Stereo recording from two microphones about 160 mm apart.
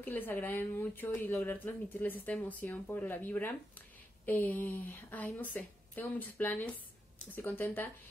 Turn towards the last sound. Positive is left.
turn(degrees=10)  # may be behind; listen again after turning